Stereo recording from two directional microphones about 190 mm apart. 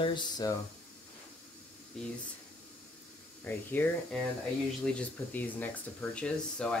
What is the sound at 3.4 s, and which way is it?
Speech, 10° left (ahead or behind).